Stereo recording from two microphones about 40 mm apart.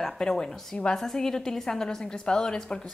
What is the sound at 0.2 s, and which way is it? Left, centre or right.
A woman's voice, centre.